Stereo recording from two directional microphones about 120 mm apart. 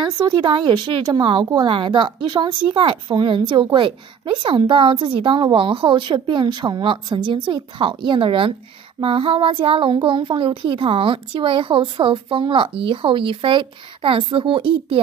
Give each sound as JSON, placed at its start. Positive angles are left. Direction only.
{"t": 0.0, "sound": "a woman's voice", "side_deg": -40}